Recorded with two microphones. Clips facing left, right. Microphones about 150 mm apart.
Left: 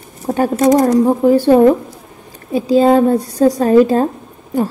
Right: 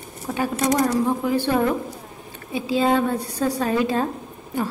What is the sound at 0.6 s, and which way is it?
A woman's voice, 50° left (ahead or behind).